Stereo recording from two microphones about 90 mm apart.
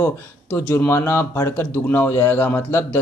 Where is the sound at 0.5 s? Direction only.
20° left (ahead or behind).